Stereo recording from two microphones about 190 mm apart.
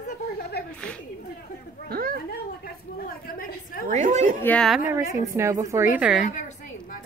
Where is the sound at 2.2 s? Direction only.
50° left (ahead or behind).